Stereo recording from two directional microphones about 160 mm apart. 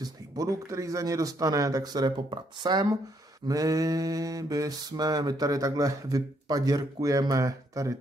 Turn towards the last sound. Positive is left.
turn(degrees=-20)  # may be behind; listen again after turning